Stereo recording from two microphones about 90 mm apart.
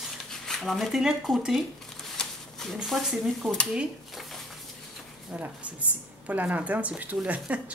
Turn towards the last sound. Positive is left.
turn(degrees=-15)  # may be behind; listen again after turning